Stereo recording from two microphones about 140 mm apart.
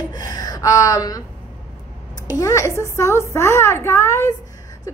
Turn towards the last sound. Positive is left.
turn(degrees=20)  # may be behind; listen again after turning